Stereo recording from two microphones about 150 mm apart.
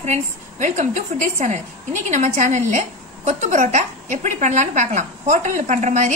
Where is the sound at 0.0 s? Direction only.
50° right (ahead or behind).